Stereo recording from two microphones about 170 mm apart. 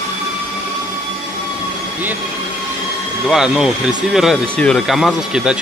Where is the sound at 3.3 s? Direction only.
5° right (ahead or behind).